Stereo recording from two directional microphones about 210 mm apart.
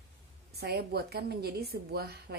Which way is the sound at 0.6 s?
50° right (ahead or behind).